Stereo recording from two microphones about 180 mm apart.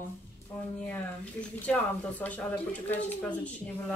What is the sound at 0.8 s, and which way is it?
Speech, 5° left (ahead or behind).